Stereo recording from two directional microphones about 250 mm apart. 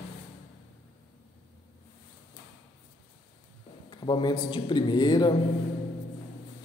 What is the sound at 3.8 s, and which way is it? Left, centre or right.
A man's voice, centre.